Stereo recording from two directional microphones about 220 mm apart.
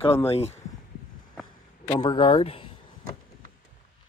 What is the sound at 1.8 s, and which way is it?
Speech, 20° left (ahead or behind).